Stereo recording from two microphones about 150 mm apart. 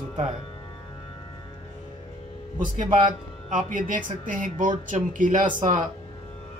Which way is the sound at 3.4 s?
60° right (ahead or behind).